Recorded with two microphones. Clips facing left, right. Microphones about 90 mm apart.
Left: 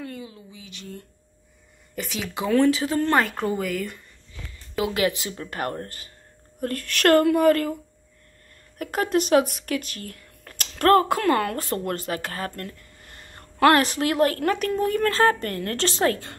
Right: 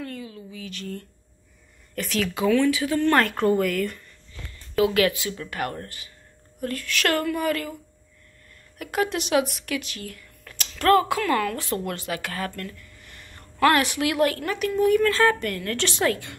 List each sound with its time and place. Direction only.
0.0 s a sound: 10° left (ahead or behind)
2.0 s speech: 10° left (ahead or behind)
2.5 s a woman's voice: 35° left (ahead or behind)
3.2 s speech: 5° left (ahead or behind)
4.9 s a woman's voice: 25° left (ahead or behind); by 7.7 s 45° left (ahead or behind)
8.7 s speech: 40° left (ahead or behind)